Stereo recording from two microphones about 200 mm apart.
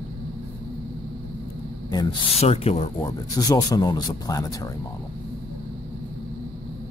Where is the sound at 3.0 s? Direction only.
20° left (ahead or behind).